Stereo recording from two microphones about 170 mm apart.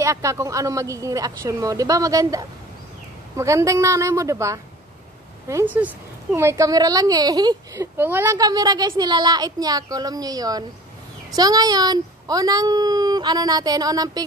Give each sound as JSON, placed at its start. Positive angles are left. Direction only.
{"t": 0.0, "sound": "a woman's voice", "side_deg": -20}